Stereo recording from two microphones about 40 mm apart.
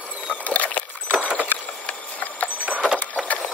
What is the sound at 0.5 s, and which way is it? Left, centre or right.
Boat, left.